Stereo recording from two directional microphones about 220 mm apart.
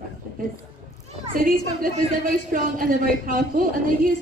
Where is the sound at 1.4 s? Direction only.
40° right (ahead or behind).